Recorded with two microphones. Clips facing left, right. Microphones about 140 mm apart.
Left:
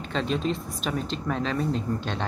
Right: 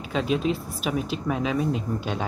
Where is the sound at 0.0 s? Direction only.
5° right (ahead or behind).